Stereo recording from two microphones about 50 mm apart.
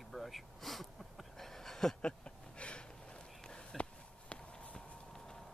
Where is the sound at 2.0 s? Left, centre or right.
Left.